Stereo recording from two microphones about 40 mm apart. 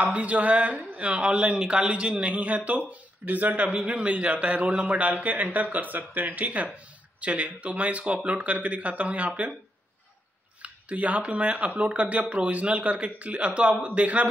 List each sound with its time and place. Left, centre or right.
0.0 s speech: right
3.7 s speech: right
10.6 s speech: right